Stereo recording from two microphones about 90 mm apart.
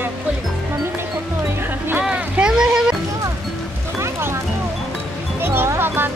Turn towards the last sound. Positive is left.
turn(degrees=-25)  # may be behind; listen again after turning